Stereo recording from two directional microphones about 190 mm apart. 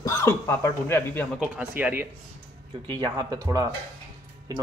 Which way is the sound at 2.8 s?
25° right (ahead or behind).